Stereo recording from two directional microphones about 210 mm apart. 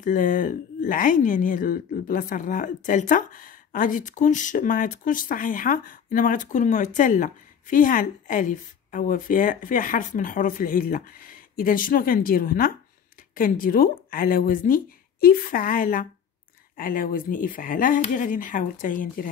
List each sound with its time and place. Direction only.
0.0 s a woman's voice: 40° left (ahead or behind)